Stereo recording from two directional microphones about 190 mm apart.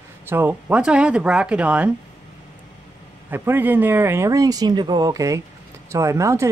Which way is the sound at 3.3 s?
10° right (ahead or behind).